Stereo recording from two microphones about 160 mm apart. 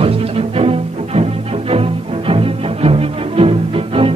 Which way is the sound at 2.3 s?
35° right (ahead or behind).